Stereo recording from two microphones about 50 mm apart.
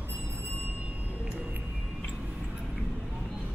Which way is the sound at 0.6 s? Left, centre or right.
Right.